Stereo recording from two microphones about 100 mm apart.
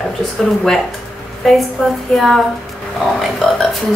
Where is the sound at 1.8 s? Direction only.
5° left (ahead or behind).